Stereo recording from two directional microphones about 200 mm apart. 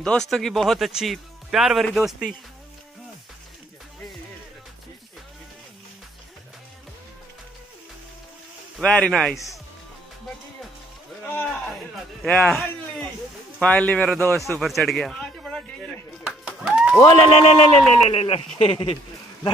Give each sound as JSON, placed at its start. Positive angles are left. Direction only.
{"t": 0.0, "sound": "speech", "side_deg": 5}
{"t": 8.7, "sound": "speech", "side_deg": 5}
{"t": 11.3, "sound": "a man's voice", "side_deg": 0}
{"t": 14.3, "sound": "a sound", "side_deg": 0}
{"t": 17.0, "sound": "speech", "side_deg": 25}